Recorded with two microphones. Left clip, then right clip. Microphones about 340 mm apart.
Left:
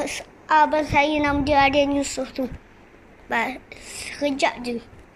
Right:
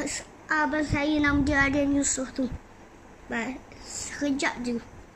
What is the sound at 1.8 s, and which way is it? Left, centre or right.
Speech, left.